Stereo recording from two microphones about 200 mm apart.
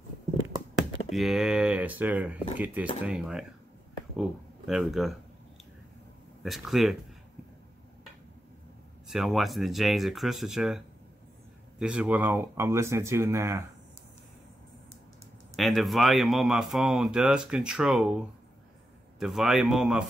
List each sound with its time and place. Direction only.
1.1 s speech: centre (ahead or behind)
6.4 s speech: centre (ahead or behind)
9.0 s speech: centre (ahead or behind)
11.8 s speech: 5° right (ahead or behind)
15.5 s speech: centre (ahead or behind)